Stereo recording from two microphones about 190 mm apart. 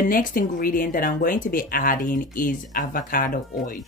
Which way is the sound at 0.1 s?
50° left (ahead or behind).